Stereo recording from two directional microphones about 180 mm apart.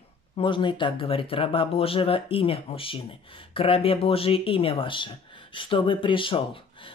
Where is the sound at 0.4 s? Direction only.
25° left (ahead or behind).